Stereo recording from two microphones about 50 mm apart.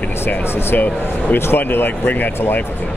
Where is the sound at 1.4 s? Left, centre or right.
Left.